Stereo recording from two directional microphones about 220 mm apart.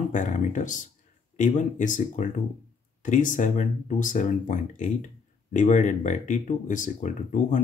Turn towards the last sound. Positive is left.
turn(degrees=35)  # may be behind; listen again after turning